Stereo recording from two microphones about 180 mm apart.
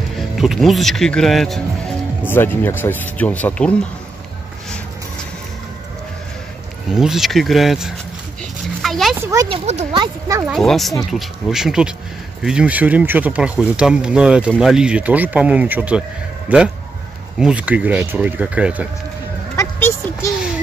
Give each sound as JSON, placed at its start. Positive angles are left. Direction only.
{"t": 0.4, "sound": "speech", "side_deg": 0}
{"t": 2.2, "sound": "speech", "side_deg": 10}
{"t": 6.9, "sound": "speech", "side_deg": 0}
{"t": 8.8, "sound": "a sound", "side_deg": 0}
{"t": 9.2, "sound": "speech", "side_deg": -20}
{"t": 9.5, "sound": "speech", "side_deg": -40}
{"t": 9.9, "sound": "speech", "side_deg": -20}
{"t": 10.5, "sound": "speech", "side_deg": 0}
{"t": 19.5, "sound": "a sound", "side_deg": 15}